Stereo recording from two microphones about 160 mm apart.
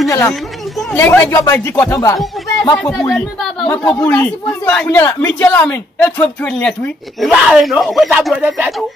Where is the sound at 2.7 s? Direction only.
5° left (ahead or behind).